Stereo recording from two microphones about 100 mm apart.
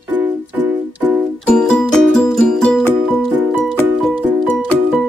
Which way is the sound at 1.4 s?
5° left (ahead or behind).